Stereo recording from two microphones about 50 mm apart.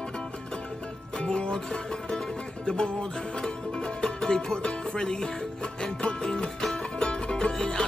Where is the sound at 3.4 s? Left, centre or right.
Centre.